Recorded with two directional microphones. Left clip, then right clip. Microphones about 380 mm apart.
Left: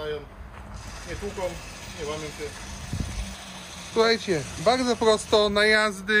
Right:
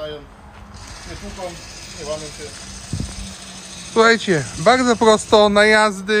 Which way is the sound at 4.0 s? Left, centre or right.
Right.